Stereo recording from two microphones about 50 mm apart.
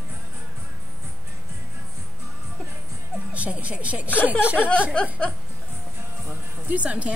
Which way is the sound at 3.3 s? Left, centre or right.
Right.